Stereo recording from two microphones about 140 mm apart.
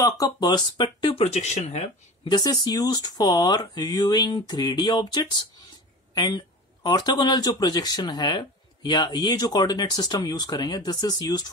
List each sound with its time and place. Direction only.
0.0 s speech: 30° left (ahead or behind); by 1.9 s 55° left (ahead or behind)
2.2 s speech: 30° left (ahead or behind)